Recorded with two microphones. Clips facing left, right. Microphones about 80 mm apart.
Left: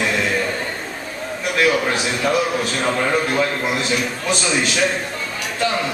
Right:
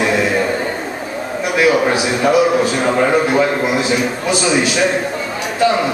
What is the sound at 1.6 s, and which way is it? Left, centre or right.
A man's voice, centre.